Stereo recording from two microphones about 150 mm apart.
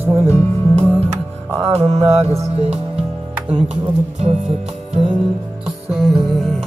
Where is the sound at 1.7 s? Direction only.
45° right (ahead or behind).